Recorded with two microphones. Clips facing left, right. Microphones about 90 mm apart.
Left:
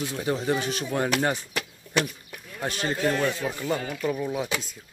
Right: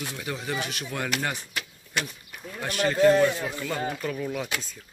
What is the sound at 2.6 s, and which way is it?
Speech, 25° left (ahead or behind).